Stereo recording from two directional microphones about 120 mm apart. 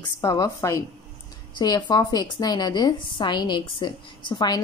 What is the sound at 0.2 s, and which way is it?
A woman's voice, 25° left (ahead or behind).